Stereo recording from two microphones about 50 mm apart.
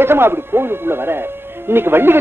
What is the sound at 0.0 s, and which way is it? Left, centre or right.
Speech, right.